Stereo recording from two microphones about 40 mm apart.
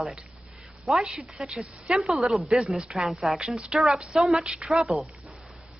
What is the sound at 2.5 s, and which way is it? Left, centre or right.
Speech, right.